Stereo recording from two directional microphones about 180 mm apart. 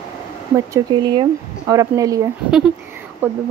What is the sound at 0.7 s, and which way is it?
Speech, 20° right (ahead or behind).